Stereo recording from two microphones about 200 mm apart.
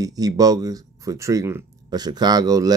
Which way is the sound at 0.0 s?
20° right (ahead or behind).